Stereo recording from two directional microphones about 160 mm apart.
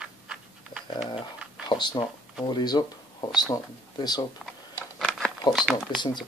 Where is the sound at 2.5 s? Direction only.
25° left (ahead or behind).